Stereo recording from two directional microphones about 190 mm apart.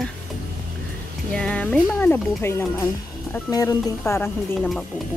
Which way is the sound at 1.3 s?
5° left (ahead or behind).